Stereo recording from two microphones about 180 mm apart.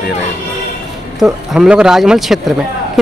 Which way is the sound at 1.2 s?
5° right (ahead or behind).